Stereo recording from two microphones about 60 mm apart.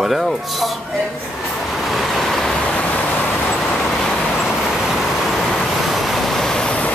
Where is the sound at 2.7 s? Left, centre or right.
Left.